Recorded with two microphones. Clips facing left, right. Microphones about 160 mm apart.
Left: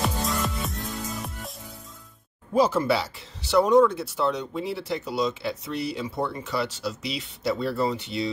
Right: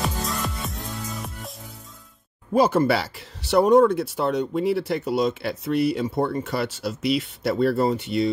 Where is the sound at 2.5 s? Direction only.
60° right (ahead or behind).